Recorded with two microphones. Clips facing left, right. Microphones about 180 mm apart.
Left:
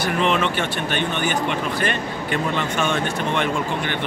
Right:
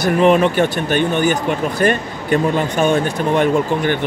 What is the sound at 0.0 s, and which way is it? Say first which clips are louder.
Speech: right 8 dB; 40° right (ahead or behind).